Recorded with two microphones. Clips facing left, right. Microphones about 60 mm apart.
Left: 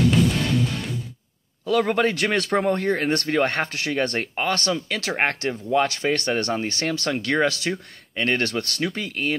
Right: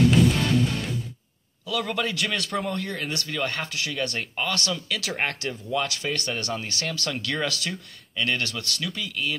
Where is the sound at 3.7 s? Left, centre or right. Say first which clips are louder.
Left 5 dB; left.